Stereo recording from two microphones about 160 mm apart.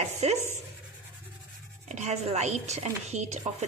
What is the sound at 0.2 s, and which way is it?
Speech, 45° right (ahead or behind).